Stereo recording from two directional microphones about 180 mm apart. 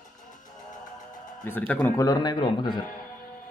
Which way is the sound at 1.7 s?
15° left (ahead or behind).